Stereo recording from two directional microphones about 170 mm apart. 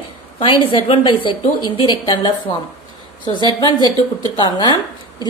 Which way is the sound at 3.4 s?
25° left (ahead or behind).